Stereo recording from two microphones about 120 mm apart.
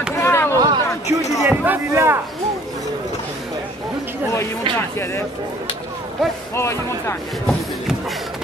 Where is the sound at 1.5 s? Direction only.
20° right (ahead or behind).